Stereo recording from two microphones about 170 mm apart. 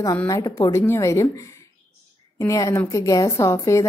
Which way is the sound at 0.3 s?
20° left (ahead or behind).